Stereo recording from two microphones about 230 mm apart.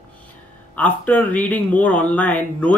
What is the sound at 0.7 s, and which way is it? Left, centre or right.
Speech, centre.